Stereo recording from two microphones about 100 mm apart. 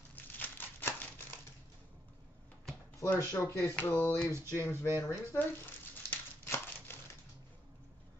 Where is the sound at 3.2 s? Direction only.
30° left (ahead or behind).